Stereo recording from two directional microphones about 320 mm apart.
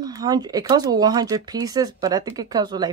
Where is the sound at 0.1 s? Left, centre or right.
Centre.